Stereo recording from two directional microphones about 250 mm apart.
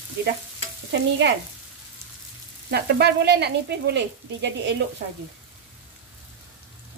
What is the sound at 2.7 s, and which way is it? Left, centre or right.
Speech, right.